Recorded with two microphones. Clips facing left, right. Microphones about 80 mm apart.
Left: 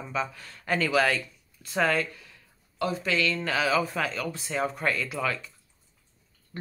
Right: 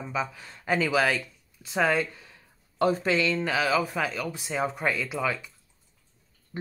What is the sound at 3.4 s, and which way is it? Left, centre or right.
Speech, centre.